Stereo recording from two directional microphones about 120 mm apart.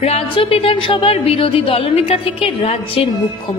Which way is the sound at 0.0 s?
50° left (ahead or behind).